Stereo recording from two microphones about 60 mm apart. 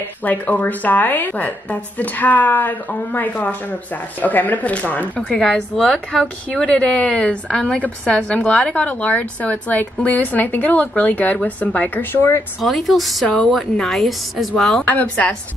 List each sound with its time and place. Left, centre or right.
0.2 s a woman's voice: left
5.4 s a woman's voice: centre; by 12.3 s left
12.6 s a woman's voice: centre
15.0 s a woman's voice: left